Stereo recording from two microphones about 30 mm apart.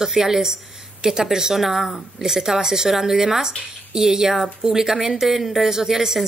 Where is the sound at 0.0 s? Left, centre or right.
Centre.